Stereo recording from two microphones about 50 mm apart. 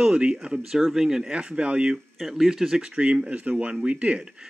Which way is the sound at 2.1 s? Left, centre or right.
Centre.